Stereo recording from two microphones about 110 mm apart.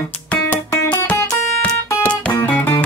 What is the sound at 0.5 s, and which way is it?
Music, 20° left (ahead or behind).